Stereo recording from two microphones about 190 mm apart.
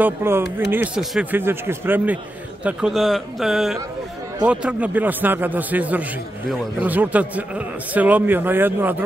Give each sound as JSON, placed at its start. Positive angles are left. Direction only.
{"t": 0.0, "sound": "a man's voice", "side_deg": -10}